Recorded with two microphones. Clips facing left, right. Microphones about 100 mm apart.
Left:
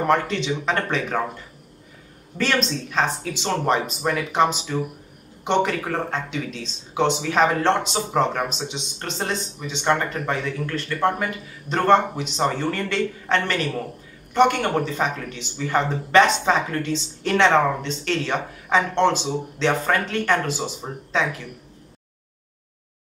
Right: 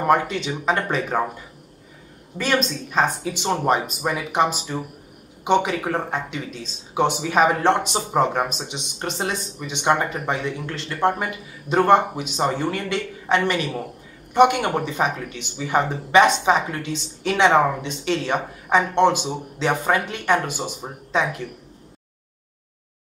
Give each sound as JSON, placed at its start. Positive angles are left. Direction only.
{"t": 0.0, "sound": "speech", "side_deg": -10}